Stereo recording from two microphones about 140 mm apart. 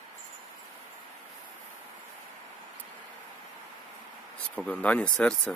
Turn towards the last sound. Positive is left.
turn(degrees=5)  # may be behind; listen again after turning